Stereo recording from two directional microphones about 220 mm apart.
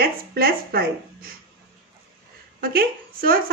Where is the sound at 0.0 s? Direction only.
45° right (ahead or behind).